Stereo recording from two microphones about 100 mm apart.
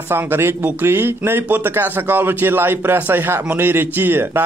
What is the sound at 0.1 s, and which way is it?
Speech, 25° right (ahead or behind).